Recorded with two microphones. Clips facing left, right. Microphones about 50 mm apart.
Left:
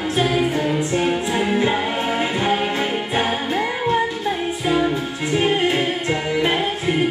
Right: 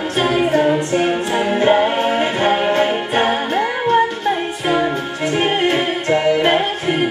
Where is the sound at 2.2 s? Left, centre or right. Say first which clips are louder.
Right 4 dB; right.